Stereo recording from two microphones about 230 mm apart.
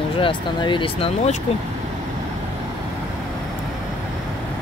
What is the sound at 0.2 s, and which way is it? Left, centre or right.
Speech, left.